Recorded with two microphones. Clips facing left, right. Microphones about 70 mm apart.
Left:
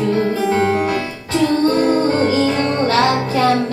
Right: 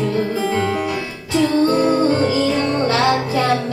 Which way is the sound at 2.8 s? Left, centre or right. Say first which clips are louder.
Left 2 dB; left.